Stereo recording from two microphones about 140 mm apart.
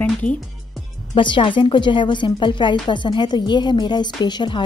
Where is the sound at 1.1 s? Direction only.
35° left (ahead or behind).